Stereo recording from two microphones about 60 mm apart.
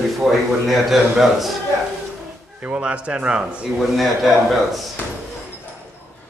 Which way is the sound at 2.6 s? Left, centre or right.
Right.